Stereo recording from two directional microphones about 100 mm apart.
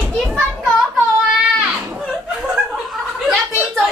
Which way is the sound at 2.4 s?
5° right (ahead or behind).